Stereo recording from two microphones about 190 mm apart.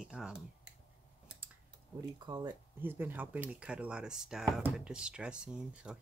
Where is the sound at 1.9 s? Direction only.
20° right (ahead or behind).